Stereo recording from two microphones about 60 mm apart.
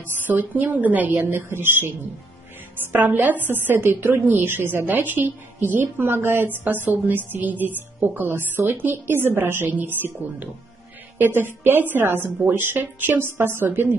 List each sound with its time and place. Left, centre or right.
0.3 s a woman's voice: right
1.2 s a woman's voice: right
2.9 s a woman's voice: right